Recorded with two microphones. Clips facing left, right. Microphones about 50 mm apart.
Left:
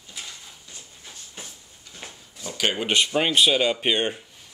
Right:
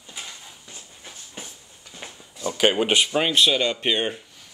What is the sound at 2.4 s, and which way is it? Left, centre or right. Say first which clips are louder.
Speech: right 5 dB; centre.